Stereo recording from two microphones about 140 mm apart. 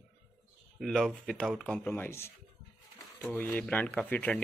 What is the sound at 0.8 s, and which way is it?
Speech, 5° left (ahead or behind).